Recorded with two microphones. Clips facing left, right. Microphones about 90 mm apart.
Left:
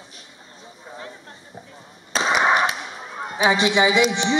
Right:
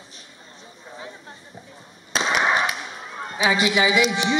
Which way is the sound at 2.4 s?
20° left (ahead or behind).